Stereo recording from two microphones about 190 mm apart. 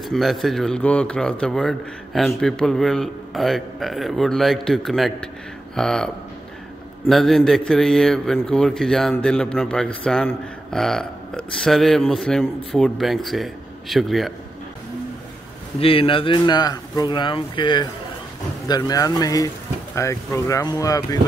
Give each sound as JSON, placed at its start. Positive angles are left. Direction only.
{"t": 0.0, "sound": "a man's voice", "side_deg": 0}
{"t": 15.8, "sound": "speech", "side_deg": 30}